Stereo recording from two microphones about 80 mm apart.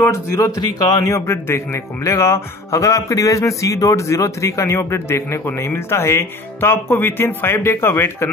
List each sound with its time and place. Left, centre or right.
0.0 s a man's voice: left